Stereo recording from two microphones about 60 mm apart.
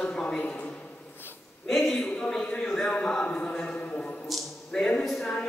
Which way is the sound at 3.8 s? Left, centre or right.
Left.